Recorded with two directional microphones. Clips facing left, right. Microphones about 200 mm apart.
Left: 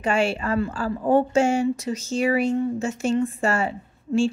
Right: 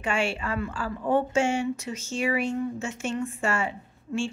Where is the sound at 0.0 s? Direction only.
40° left (ahead or behind).